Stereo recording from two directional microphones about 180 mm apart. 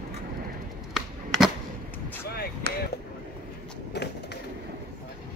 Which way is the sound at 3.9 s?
65° left (ahead or behind).